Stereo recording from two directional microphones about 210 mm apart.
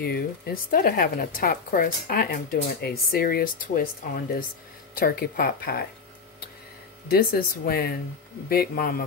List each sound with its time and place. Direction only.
0.0 s speech: 45° left (ahead or behind)
7.1 s speech: 45° left (ahead or behind)